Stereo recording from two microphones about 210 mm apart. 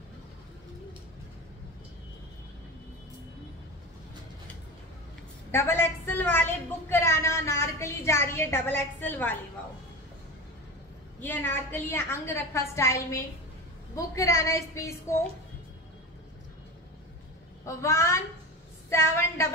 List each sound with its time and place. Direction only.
5.5 s a woman's voice: 10° left (ahead or behind)
11.1 s a woman's voice: 10° left (ahead or behind)
17.6 s a woman's voice: 15° left (ahead or behind)